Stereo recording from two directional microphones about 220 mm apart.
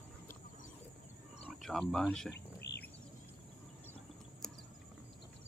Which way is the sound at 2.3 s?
50° left (ahead or behind).